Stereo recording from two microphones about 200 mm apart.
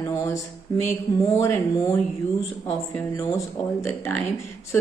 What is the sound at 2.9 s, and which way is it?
Speech, 15° left (ahead or behind).